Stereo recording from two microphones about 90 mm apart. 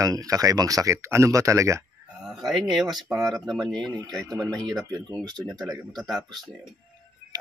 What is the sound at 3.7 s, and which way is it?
Speech, 5° left (ahead or behind).